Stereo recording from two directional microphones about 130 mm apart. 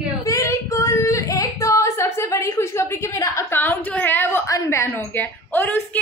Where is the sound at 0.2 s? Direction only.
25° left (ahead or behind).